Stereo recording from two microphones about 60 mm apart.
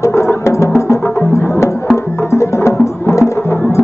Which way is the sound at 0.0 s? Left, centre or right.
Left.